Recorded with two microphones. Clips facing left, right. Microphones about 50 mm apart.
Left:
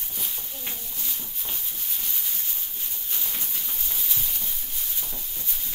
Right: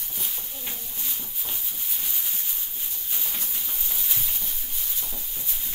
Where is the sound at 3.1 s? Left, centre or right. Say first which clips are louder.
Even; centre.